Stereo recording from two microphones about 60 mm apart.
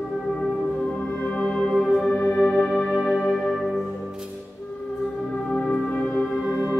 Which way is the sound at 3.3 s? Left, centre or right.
Centre.